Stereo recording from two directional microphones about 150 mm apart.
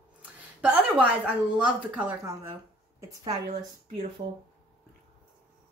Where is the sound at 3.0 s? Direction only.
25° right (ahead or behind).